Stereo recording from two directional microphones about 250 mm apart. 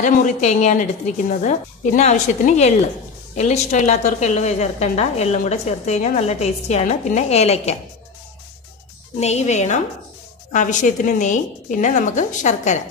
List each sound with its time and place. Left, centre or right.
0.0 s a woman's voice: left
9.2 s a woman's voice: left